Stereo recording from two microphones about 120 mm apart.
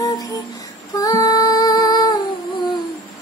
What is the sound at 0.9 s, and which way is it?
Female singing, 35° left (ahead or behind).